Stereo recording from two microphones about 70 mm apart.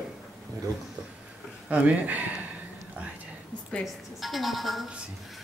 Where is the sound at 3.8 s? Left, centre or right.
Centre.